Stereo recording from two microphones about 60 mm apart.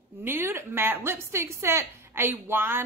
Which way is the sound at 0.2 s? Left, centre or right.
Right.